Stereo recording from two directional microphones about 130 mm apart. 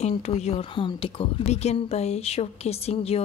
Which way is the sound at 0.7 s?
40° left (ahead or behind).